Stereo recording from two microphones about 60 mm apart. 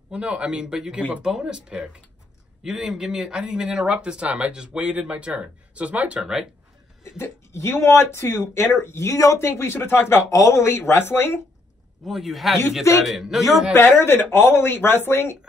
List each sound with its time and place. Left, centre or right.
0.1 s speech: centre
7.2 s speech: left
9.5 s speech: left
12.0 s speech: centre
13.7 s speech: left